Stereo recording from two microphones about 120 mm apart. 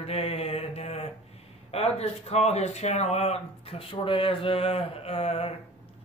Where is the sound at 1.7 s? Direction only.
60° left (ahead or behind).